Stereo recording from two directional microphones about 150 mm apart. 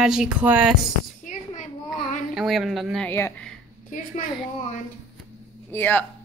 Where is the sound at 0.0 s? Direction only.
5° right (ahead or behind).